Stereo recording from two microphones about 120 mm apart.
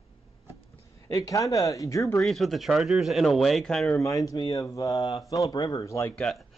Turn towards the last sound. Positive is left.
turn(degrees=5)  # may be behind; listen again after turning